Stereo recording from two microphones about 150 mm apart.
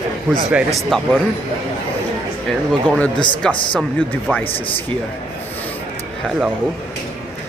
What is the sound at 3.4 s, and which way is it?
Speech, 5° left (ahead or behind).